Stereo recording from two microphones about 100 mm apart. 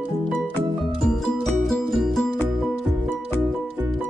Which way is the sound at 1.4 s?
Centre (ahead or behind).